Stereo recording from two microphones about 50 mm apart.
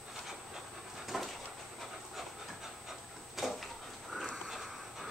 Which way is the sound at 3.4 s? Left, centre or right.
Centre.